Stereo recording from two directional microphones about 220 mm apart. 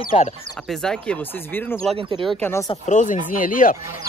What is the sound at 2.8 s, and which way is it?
Speech, 35° left (ahead or behind).